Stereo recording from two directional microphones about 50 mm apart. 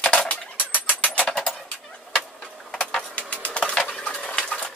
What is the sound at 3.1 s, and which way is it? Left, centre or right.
Printer, left.